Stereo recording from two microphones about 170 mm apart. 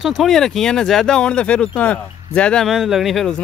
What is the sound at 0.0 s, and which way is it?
Speech, centre (ahead or behind).